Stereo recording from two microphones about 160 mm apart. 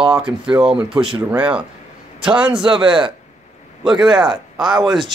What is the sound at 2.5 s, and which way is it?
Speech, 30° right (ahead or behind).